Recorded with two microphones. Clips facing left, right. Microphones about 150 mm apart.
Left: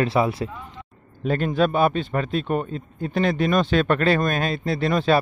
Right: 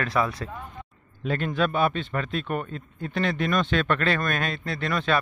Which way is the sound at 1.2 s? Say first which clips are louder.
Left 5 dB; 40° left (ahead or behind).